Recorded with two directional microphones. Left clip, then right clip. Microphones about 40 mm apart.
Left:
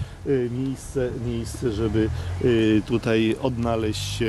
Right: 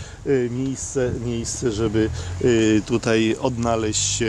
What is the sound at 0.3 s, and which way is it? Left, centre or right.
Speech, right.